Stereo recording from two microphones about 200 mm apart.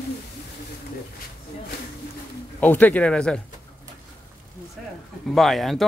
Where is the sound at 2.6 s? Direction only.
10° left (ahead or behind).